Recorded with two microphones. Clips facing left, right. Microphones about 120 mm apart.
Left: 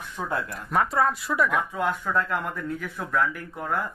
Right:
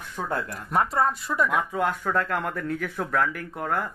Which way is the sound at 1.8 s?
55° right (ahead or behind).